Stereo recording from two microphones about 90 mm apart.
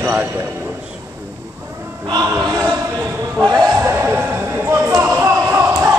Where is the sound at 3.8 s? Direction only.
25° right (ahead or behind).